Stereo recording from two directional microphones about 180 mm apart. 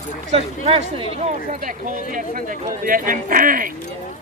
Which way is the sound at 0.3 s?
35° right (ahead or behind).